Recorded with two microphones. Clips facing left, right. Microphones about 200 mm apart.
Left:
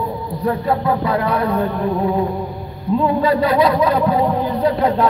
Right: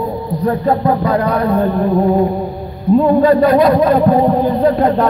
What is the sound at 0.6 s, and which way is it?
Speech, 40° right (ahead or behind).